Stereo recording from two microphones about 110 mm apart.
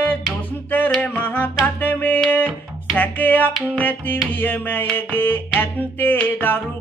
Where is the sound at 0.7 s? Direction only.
15° left (ahead or behind).